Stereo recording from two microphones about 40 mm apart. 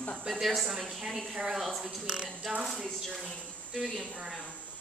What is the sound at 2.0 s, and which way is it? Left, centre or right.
Speech, centre.